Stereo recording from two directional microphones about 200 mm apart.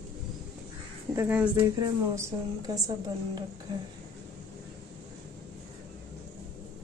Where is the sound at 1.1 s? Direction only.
10° right (ahead or behind).